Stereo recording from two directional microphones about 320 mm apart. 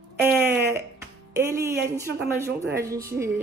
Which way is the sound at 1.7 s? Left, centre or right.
Right.